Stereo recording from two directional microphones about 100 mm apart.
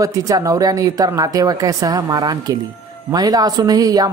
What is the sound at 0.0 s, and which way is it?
Speech, 35° right (ahead or behind).